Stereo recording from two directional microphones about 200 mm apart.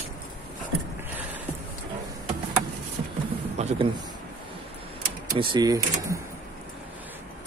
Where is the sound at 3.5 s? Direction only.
35° right (ahead or behind).